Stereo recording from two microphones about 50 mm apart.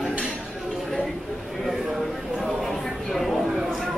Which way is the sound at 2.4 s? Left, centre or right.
Centre.